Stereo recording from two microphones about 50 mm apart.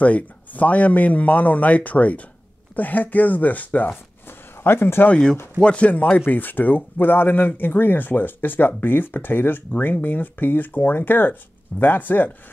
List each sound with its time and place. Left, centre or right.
0.0 s speech: left
4.6 s speech: left
5.1 s speech: centre; by 12.3 s left